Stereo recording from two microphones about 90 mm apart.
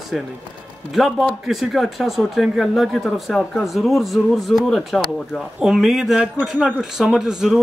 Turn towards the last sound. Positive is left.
turn(degrees=-5)  # may be behind; listen again after turning